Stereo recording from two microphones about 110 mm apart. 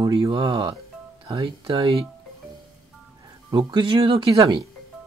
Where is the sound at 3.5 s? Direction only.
45° right (ahead or behind).